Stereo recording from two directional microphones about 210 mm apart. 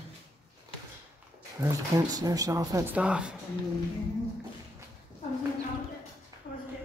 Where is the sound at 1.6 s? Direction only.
15° right (ahead or behind).